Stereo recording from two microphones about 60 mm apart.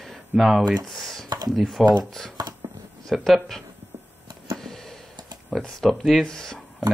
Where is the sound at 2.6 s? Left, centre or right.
Right.